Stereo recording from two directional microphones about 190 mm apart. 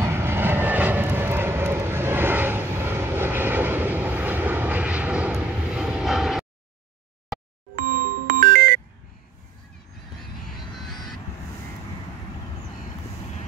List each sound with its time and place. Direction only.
0.0 s vehicle: 10° right (ahead or behind)
8.3 s music: 50° right (ahead or behind)